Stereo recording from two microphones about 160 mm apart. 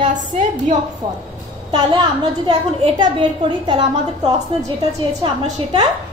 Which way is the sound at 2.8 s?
35° right (ahead or behind).